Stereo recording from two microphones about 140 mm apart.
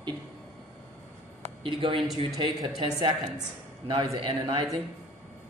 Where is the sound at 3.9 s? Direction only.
35° right (ahead or behind).